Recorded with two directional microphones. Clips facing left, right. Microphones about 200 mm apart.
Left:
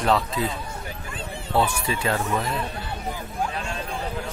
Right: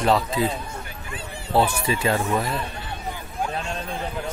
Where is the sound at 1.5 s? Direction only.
30° right (ahead or behind).